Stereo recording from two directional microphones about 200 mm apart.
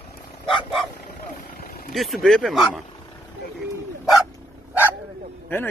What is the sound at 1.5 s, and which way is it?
Vehicle, 45° left (ahead or behind).